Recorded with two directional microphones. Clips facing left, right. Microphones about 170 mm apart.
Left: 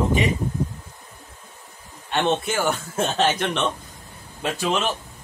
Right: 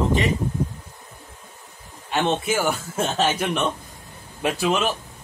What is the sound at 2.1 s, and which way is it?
Speech, 5° right (ahead or behind).